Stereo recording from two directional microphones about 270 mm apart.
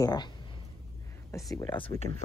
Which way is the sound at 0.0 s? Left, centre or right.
Centre.